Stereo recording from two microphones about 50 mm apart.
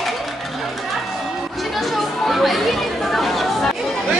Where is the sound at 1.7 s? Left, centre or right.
Centre.